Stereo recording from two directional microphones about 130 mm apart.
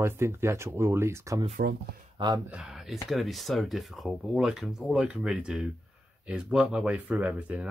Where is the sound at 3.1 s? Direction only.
Centre (ahead or behind).